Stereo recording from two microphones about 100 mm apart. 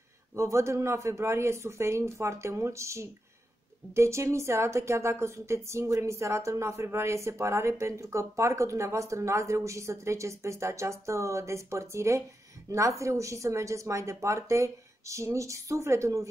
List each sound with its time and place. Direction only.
0.4 s a woman's voice: 30° right (ahead or behind)